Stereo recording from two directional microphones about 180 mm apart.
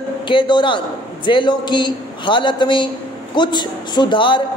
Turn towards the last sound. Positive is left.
turn(degrees=25)  # may be behind; listen again after turning